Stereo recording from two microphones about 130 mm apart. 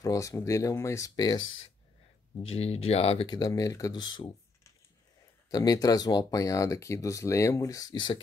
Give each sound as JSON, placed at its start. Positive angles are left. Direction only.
{"t": 0.0, "sound": "speech", "side_deg": 25}
{"t": 2.5, "sound": "speech", "side_deg": 50}
{"t": 3.3, "sound": "speech", "side_deg": 30}
{"t": 5.5, "sound": "speech", "side_deg": 30}